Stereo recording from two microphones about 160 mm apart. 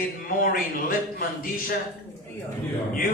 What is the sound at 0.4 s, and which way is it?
A man's voice, 65° left (ahead or behind).